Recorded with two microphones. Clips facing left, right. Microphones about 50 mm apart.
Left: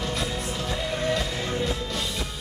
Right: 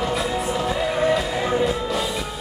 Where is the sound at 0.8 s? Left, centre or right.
Centre.